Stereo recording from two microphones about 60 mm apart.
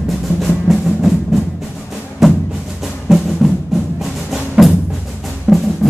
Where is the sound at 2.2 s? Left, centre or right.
Centre.